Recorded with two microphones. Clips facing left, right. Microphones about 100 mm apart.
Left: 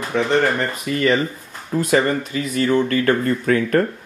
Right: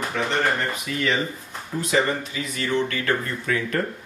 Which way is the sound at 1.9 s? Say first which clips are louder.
Left 4 dB; 45° left (ahead or behind).